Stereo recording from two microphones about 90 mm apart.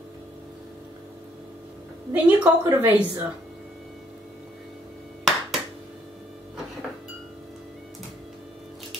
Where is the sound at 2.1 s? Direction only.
20° right (ahead or behind).